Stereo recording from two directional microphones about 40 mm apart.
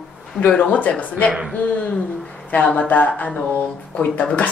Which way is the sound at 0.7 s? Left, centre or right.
Left.